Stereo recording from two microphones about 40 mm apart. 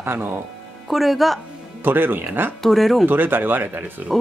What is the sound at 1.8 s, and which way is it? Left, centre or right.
Speech, right.